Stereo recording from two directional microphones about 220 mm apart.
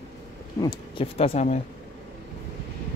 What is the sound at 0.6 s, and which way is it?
Speech, 20° left (ahead or behind).